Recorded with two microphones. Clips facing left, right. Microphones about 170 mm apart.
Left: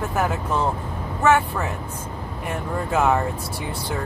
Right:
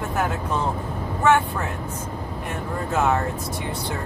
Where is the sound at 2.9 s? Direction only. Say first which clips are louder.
Left 2 dB; 10° left (ahead or behind).